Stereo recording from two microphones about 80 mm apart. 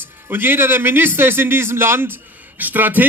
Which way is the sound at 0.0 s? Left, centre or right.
Right.